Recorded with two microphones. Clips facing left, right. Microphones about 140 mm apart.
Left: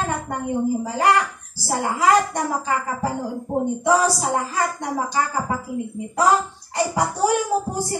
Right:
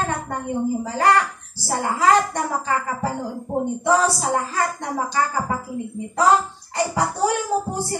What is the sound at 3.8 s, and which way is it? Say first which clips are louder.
Speech: even; 15° left (ahead or behind).